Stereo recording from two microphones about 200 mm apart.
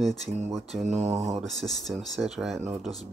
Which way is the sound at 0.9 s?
35° right (ahead or behind).